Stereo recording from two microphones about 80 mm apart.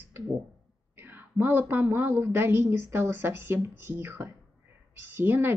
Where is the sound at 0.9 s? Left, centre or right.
Right.